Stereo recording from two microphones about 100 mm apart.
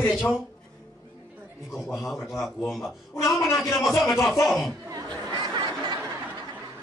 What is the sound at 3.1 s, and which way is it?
Speech, 30° left (ahead or behind).